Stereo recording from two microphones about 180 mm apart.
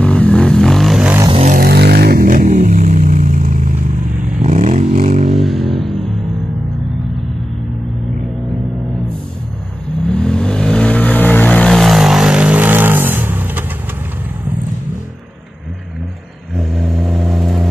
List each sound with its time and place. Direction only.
0.0 s vehicle: 5° left (ahead or behind)
1.6 s vehicle: 60° right (ahead or behind); by 5.3 s 40° right (ahead or behind)
5.3 s a sound: centre (ahead or behind)
10.0 s vehicle: 5° left (ahead or behind)
16.5 s vehicle: centre (ahead or behind)